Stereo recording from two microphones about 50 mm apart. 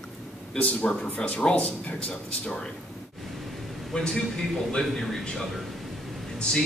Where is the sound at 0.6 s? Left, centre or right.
Left.